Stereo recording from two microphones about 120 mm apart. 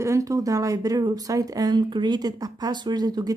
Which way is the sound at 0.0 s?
25° right (ahead or behind).